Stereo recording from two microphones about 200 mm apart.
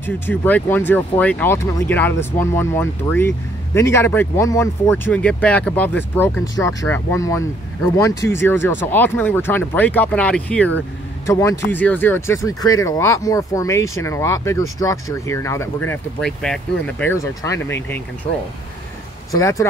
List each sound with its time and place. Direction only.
0.0 s speech: 10° left (ahead or behind)
19.3 s speech: 15° left (ahead or behind)